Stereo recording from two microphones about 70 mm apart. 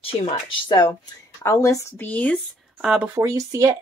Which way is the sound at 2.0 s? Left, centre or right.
Left.